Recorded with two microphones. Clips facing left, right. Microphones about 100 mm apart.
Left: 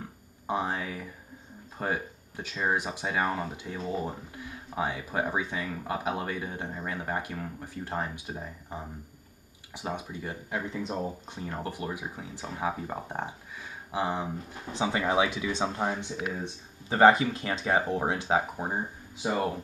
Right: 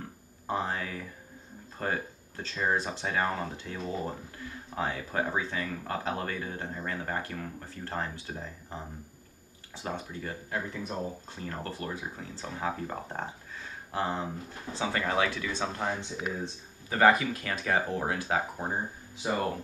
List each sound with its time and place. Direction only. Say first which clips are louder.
0.5 s speech: left 1 dB; 15° left (ahead or behind)
16.9 s speech: left 3 dB; 25° left (ahead or behind)